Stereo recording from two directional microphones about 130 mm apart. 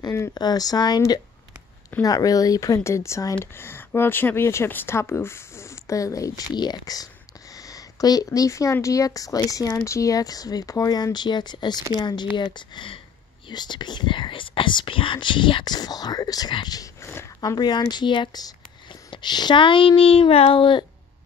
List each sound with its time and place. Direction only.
0.0 s speech: 20° left (ahead or behind)
0.3 s speech: 30° left (ahead or behind)
17.4 s speech: 30° left (ahead or behind)